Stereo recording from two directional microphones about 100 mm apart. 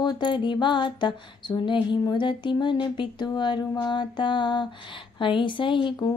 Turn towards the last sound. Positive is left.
turn(degrees=55)  # may be behind; listen again after turning